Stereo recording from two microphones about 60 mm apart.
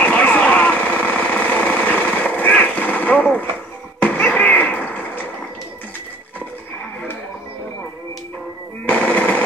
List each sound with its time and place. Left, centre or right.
0.0 s jackhammer: left
4.1 s a sound: left
8.8 s machine gun: left